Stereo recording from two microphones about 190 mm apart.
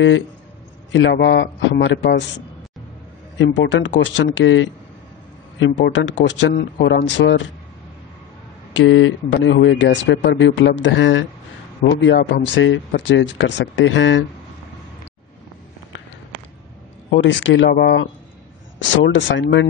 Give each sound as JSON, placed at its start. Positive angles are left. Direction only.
{"t": 0.9, "sound": "a man's voice", "side_deg": 65}
{"t": 8.7, "sound": "speech", "side_deg": 80}
{"t": 17.1, "sound": "speech", "side_deg": 75}